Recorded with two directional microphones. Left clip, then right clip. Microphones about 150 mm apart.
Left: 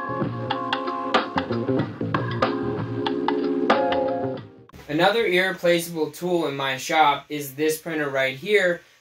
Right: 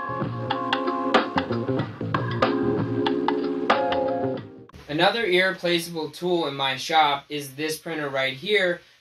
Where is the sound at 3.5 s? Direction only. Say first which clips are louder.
Left 2 dB; 35° right (ahead or behind).